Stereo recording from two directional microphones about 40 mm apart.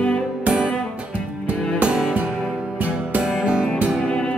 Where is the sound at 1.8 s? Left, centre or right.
Right.